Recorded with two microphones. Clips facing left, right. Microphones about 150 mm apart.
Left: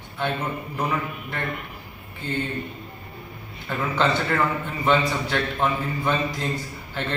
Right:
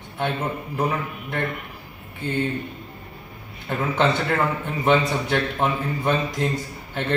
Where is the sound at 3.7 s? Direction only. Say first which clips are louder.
Right 2 dB; 20° right (ahead or behind).